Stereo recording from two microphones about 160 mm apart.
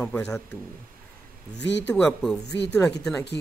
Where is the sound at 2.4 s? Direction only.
90° left.